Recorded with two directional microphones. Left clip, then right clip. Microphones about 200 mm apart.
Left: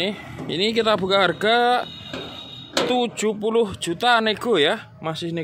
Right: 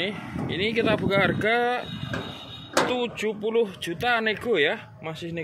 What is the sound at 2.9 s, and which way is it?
Speech, 40° left (ahead or behind).